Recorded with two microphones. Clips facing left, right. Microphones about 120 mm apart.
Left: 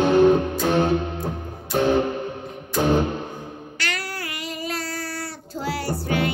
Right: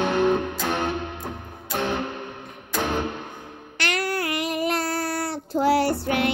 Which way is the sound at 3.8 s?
55° right (ahead or behind).